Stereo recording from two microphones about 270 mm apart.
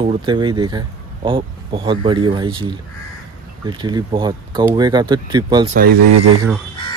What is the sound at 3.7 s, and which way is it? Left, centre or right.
Speech, centre.